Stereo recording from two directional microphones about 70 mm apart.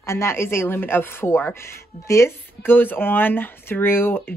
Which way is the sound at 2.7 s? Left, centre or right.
Left.